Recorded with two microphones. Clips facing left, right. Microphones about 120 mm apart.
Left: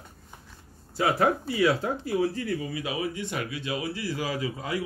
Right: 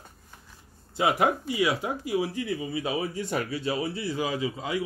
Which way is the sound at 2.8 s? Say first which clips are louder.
Right 1 dB; 35° right (ahead or behind).